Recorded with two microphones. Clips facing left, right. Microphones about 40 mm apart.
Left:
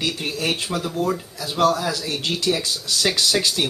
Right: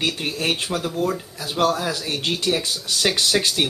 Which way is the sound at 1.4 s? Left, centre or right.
Right.